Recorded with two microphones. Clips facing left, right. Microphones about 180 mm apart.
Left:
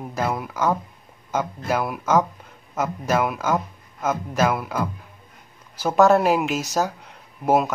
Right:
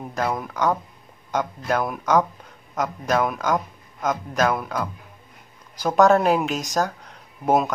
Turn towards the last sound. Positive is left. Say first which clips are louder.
# left 1 dB
turn(degrees=0)  # may be behind; listen again after turning